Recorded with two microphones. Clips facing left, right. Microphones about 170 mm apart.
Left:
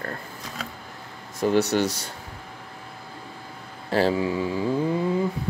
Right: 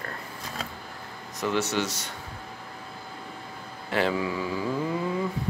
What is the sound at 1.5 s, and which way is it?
Speech, 35° left (ahead or behind).